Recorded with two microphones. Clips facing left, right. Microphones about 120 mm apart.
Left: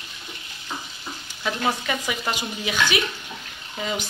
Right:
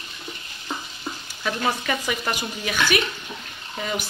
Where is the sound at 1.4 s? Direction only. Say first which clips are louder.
Even; 15° left (ahead or behind).